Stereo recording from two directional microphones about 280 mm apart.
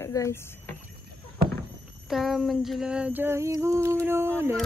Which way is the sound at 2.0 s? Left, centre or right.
Centre.